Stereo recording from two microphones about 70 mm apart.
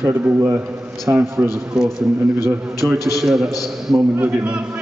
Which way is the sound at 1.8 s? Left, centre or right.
Centre.